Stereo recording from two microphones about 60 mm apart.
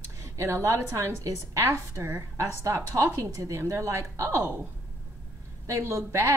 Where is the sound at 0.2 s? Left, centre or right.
Right.